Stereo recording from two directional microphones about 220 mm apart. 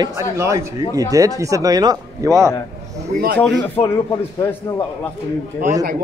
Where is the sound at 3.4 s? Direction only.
10° left (ahead or behind).